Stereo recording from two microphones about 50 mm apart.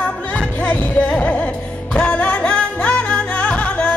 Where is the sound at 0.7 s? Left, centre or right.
Left.